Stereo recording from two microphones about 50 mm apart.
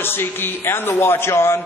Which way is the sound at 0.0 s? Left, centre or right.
Left.